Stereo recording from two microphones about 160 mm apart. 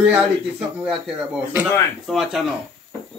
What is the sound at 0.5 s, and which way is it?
Speech, 5° right (ahead or behind).